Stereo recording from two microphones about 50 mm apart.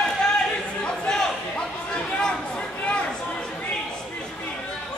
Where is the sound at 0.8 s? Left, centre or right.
Centre.